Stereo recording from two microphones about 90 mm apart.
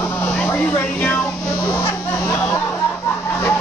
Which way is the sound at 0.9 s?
15° left (ahead or behind).